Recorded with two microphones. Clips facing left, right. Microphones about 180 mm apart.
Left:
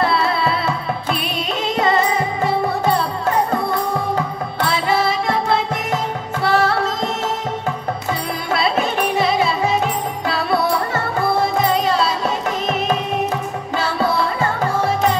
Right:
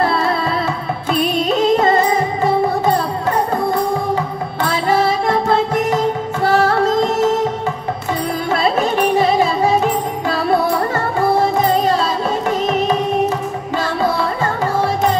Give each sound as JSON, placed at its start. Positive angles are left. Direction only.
{"t": 0.0, "sound": "music", "side_deg": -45}
{"t": 4.6, "sound": "music", "side_deg": -45}
{"t": 6.4, "sound": "music", "side_deg": -45}
{"t": 8.5, "sound": "music", "side_deg": -40}
{"t": 11.6, "sound": "music", "side_deg": -40}